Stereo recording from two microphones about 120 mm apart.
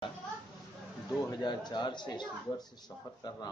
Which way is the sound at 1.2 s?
35° left (ahead or behind).